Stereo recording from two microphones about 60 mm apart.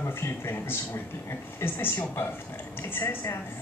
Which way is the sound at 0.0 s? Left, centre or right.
Left.